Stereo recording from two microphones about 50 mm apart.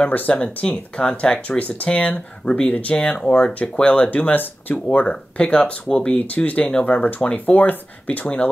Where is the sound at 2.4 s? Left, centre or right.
Centre.